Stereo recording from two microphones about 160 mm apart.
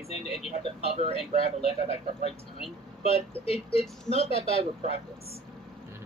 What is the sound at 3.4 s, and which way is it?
Speech, 35° left (ahead or behind).